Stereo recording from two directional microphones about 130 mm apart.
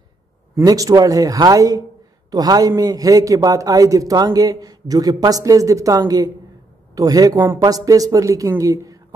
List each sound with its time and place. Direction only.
0.6 s a man's voice: 25° right (ahead or behind)
7.3 s speech: 15° right (ahead or behind)
7.6 s a man's voice: 25° right (ahead or behind)